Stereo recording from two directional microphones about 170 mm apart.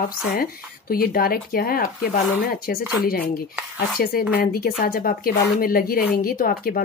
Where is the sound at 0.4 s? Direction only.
60° left (ahead or behind).